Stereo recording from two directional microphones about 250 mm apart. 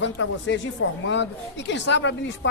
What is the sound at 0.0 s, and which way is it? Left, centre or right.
Speech, left.